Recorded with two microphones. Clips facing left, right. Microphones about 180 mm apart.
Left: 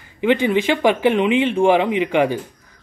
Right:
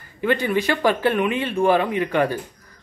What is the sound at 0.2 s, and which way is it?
Speech, 20° left (ahead or behind).